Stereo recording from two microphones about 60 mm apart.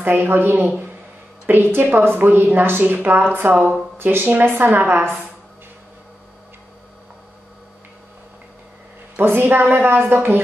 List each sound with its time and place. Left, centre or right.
0.0 s speech: right
9.1 s speech: right